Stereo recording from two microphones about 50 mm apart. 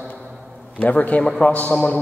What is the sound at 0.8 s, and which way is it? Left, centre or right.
A man's voice, left.